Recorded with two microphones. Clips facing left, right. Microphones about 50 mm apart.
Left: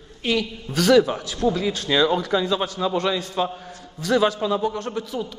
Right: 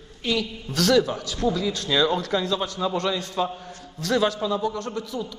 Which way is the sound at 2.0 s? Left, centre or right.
Centre.